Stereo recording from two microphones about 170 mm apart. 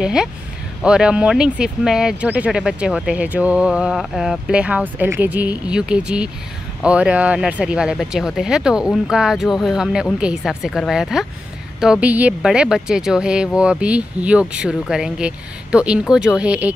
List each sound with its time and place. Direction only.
0.0 s speech: 5° right (ahead or behind)